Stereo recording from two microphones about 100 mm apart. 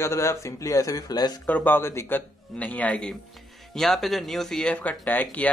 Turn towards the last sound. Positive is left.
turn(degrees=15)  # may be behind; listen again after turning